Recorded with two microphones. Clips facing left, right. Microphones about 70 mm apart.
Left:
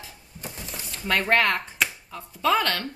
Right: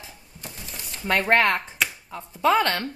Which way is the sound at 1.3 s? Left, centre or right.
Right.